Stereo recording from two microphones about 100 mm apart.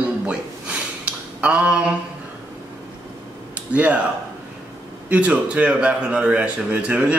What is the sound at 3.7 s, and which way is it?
Speech, 15° right (ahead or behind).